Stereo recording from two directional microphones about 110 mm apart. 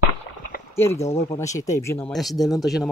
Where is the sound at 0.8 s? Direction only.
25° left (ahead or behind).